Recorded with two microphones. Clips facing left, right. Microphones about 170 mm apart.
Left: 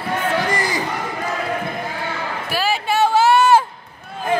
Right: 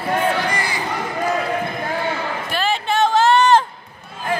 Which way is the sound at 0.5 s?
45° left (ahead or behind).